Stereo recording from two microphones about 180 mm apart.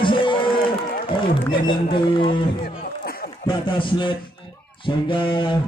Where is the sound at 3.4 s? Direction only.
25° left (ahead or behind).